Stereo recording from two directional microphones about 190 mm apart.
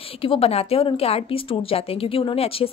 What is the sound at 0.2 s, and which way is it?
A woman's voice, 30° left (ahead or behind).